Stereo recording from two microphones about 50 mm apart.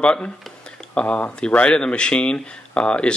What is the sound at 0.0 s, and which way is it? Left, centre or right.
Speech, left.